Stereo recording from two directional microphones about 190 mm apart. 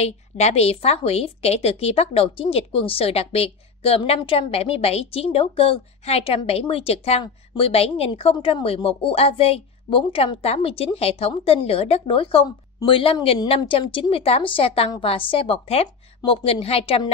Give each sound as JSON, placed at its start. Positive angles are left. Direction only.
{"t": 0.0, "sound": "a woman's voice", "side_deg": 35}